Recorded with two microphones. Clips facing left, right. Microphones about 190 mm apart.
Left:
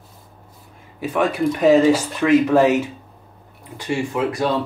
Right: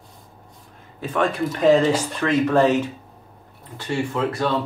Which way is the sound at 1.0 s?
10° left (ahead or behind).